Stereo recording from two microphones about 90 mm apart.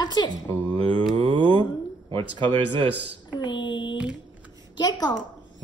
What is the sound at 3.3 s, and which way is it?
Child singing, 60° left (ahead or behind).